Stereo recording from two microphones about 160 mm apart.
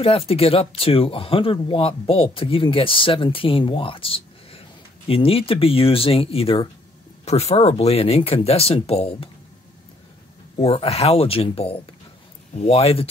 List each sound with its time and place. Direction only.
0.3 s speech: 35° left (ahead or behind)
10.6 s speech: 40° left (ahead or behind)